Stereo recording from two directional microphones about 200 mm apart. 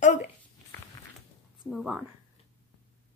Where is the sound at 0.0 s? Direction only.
40° left (ahead or behind).